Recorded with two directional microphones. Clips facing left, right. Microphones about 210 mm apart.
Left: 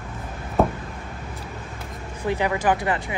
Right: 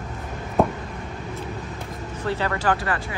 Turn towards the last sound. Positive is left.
turn(degrees=20)  # may be behind; listen again after turning